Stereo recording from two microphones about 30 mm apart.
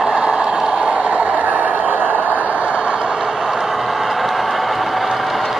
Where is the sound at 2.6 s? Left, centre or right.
Right.